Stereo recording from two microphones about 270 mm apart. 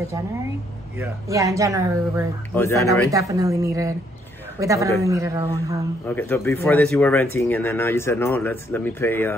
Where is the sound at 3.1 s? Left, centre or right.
Centre.